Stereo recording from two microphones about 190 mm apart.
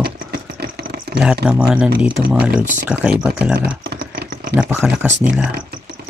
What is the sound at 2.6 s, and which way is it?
Speech, 40° right (ahead or behind).